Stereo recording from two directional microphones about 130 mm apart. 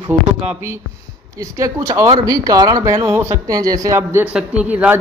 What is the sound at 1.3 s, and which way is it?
Speech, 25° right (ahead or behind).